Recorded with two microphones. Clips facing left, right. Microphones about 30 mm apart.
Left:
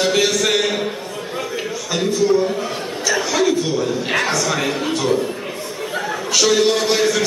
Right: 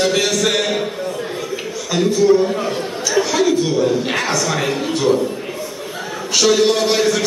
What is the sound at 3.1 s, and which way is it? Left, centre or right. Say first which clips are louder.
A man's voice: right 4 dB; centre.